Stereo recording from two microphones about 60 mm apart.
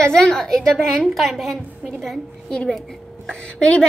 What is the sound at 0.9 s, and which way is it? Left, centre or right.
Speech, centre.